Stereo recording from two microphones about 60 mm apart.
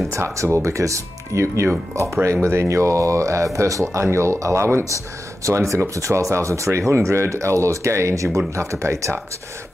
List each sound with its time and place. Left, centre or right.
0.1 s speech: right
4.0 s speech: right